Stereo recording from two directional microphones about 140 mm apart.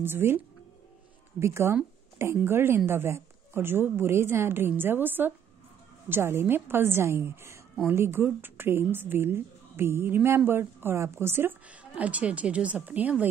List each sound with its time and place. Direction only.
0.0 s a woman's voice: 15° right (ahead or behind)
1.4 s a woman's voice: 20° right (ahead or behind)